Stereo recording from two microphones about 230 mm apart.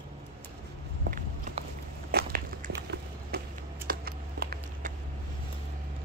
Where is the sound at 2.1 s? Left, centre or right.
Right.